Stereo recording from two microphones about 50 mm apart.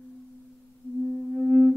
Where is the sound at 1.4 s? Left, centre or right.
Centre.